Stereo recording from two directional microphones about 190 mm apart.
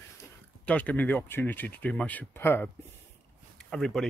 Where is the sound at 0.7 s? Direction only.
5° left (ahead or behind).